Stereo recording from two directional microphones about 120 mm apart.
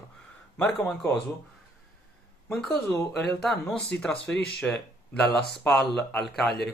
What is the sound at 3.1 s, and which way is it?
A man's voice, 5° left (ahead or behind).